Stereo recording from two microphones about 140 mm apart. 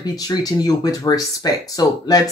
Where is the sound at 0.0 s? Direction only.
30° left (ahead or behind).